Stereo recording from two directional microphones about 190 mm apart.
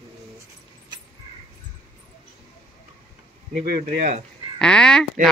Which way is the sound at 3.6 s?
50° right (ahead or behind).